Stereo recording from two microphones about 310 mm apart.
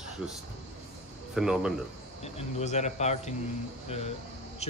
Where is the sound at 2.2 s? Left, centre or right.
Left.